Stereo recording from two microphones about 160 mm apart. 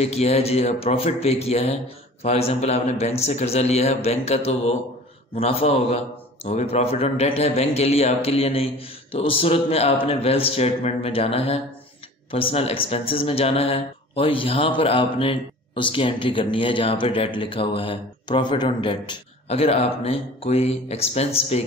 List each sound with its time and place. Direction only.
0.0 s speech: 40° left (ahead or behind)